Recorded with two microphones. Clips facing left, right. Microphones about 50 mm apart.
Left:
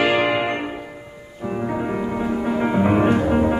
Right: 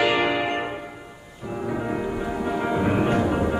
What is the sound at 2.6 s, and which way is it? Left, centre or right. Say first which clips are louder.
Music: left 5 dB; left.